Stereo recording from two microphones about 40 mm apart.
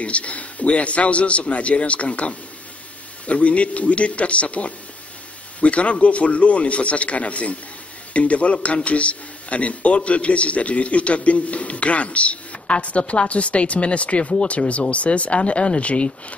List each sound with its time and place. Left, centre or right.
0.0 s a man's voice: left